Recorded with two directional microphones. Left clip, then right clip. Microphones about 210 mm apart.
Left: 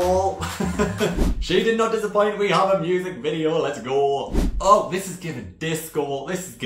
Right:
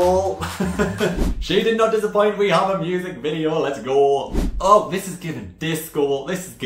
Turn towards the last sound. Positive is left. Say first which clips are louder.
# right 4 dB
turn(degrees=-20)  # may be behind; listen again after turning